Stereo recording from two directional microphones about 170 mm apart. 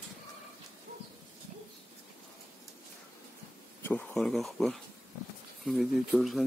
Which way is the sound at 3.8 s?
10° left (ahead or behind).